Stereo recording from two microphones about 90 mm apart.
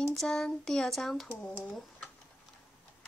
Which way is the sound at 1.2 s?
20° left (ahead or behind).